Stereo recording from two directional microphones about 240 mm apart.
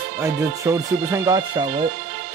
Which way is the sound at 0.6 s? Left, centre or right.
Centre.